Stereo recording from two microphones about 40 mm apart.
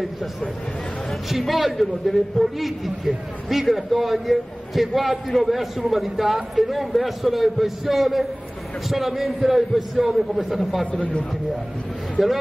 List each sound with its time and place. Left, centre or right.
1.5 s a man's voice: centre
10.9 s a man's voice: left
12.2 s speech: centre